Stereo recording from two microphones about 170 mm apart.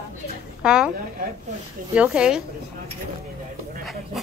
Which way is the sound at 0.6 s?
5° right (ahead or behind).